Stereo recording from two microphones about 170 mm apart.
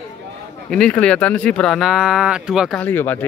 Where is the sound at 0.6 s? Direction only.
5° left (ahead or behind).